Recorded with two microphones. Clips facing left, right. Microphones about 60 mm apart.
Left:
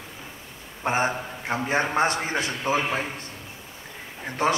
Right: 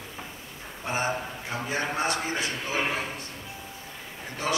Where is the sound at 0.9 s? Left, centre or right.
Left.